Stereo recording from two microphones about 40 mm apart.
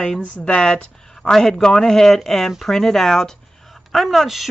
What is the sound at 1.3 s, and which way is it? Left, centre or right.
Speech, centre.